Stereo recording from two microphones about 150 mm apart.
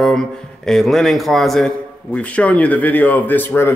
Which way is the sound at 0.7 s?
Centre (ahead or behind).